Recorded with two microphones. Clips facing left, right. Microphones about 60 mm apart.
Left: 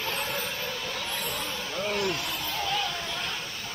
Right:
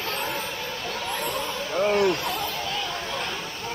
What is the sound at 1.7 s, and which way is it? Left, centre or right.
Vehicle, right.